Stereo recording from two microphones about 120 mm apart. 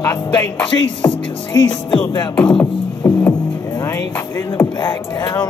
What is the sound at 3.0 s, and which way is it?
Music, 25° left (ahead or behind).